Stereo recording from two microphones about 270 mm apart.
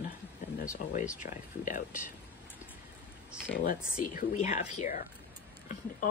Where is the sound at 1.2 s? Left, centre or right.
Left.